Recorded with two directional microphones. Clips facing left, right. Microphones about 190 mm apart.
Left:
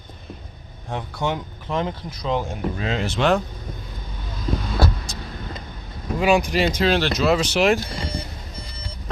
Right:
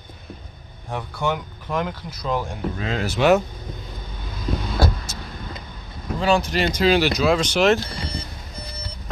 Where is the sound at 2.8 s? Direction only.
Centre (ahead or behind).